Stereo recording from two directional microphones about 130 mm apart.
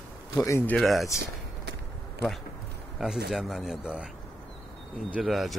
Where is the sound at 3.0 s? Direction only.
Centre (ahead or behind).